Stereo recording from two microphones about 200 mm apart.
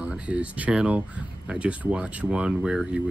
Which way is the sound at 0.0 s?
5° right (ahead or behind).